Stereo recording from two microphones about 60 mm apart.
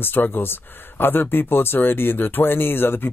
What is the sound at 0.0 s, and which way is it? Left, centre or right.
Speech, left.